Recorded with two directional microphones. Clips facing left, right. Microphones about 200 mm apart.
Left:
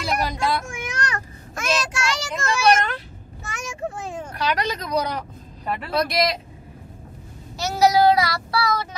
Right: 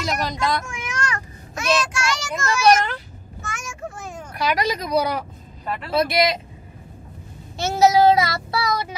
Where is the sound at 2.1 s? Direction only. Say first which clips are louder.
Right 1 dB; 35° left (ahead or behind).